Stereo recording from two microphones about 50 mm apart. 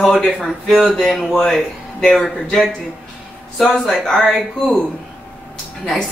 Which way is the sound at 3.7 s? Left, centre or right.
Centre.